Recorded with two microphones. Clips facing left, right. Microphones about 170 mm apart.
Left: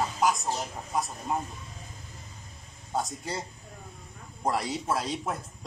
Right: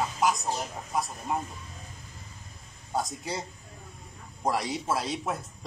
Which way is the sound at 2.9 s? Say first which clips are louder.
Even; centre (ahead or behind).